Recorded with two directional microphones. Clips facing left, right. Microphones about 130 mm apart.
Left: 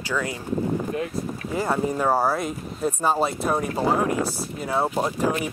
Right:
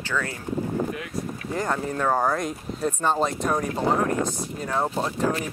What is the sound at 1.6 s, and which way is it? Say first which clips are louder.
Speech: left 3 dB; 10° left (ahead or behind).